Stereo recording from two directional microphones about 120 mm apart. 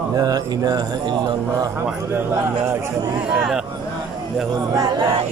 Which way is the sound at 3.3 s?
5° right (ahead or behind).